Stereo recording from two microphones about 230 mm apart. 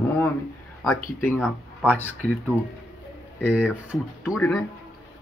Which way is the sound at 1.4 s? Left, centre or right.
Centre.